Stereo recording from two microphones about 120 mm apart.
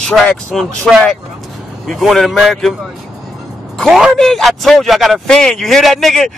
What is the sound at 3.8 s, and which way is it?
Speech, centre (ahead or behind).